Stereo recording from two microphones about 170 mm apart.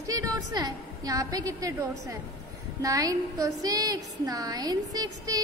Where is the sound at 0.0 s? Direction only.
20° right (ahead or behind).